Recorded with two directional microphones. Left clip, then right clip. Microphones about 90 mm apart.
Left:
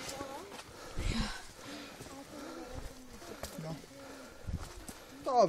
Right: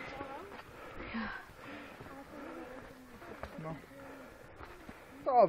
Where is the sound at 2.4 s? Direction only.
30° left (ahead or behind).